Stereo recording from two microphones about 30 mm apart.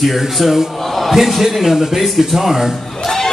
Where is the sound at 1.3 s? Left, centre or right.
Centre.